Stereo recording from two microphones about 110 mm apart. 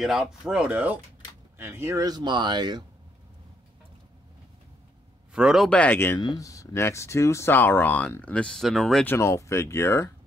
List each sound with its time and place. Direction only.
0.0 s speech: centre (ahead or behind); by 2.0 s 25° right (ahead or behind)
2.0 s speech: 40° right (ahead or behind)
5.3 s speech: 5° right (ahead or behind)
5.7 s speech: 15° left (ahead or behind)
6.1 s speech: 35° left (ahead or behind); by 9.0 s centre (ahead or behind)
9.0 s speech: 20° left (ahead or behind)